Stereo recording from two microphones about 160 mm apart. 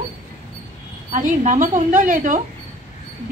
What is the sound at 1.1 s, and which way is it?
A woman's voice, 50° right (ahead or behind).